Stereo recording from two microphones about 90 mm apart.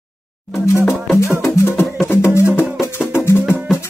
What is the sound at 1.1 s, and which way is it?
Music, 30° left (ahead or behind).